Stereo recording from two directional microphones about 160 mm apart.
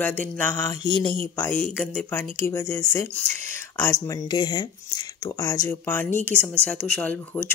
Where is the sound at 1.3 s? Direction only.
15° left (ahead or behind).